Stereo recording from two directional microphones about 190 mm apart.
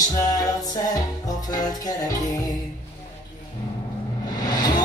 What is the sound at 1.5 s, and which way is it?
Music, 20° left (ahead or behind).